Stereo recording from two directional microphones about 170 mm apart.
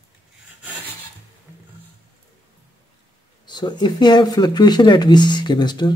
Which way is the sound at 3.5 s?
25° left (ahead or behind).